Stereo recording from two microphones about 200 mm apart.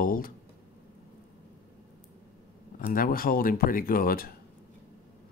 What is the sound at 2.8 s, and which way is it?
Speech, 45° left (ahead or behind).